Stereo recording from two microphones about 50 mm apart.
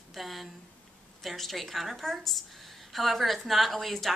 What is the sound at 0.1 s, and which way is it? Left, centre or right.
A woman's voice, centre.